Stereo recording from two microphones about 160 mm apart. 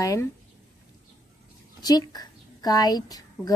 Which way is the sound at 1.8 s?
25° left (ahead or behind).